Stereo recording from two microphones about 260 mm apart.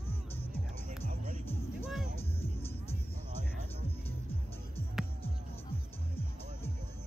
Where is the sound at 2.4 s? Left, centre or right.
Left.